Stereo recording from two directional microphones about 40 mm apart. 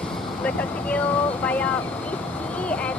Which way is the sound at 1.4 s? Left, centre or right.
Left.